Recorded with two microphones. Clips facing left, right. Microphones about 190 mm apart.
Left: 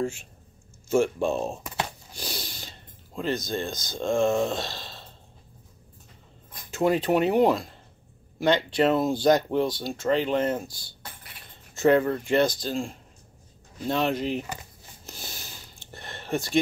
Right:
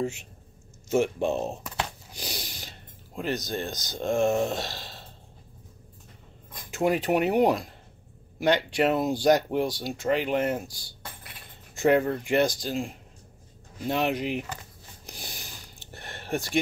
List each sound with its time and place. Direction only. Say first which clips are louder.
0.0 s speech: left 1 dB; 20° right (ahead or behind)
2.1 s a sound: left 1 dB; 15° right (ahead or behind)
3.2 s speech: left 2 dB; 15° right (ahead or behind)
6.7 s speech: left 2 dB; 15° right (ahead or behind)
13.8 s speech: left 1 dB; 15° right (ahead or behind)
15.0 s a sound: left 1 dB; 15° right (ahead or behind)